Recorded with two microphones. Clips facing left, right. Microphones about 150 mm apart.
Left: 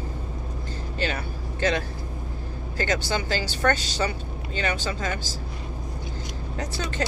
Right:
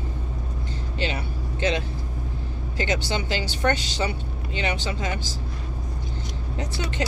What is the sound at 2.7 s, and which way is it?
Speech, 20° right (ahead or behind).